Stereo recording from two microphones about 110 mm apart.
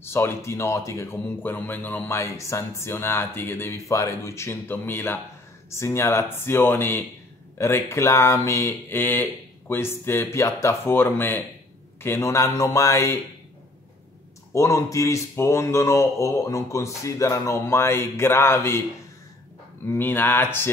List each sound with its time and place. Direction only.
0.0 s speech: 20° left (ahead or behind)
14.5 s speech: 30° left (ahead or behind)
19.9 s speech: 20° left (ahead or behind)